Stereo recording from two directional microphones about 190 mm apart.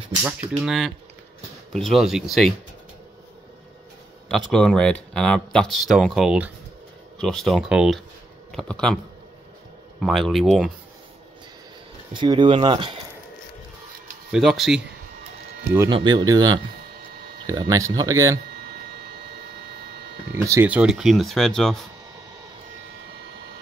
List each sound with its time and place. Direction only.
0.2 s speech: 5° right (ahead or behind)
4.3 s speech: centre (ahead or behind)
12.1 s speech: 25° right (ahead or behind)
14.3 s speech: centre (ahead or behind)
15.9 s speech: 25° right (ahead or behind)
18.5 s printer: 55° right (ahead or behind)
20.3 s speech: 15° right (ahead or behind); by 21.7 s centre (ahead or behind)